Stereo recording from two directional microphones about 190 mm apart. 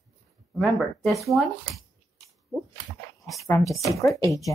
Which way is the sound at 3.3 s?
Centre (ahead or behind).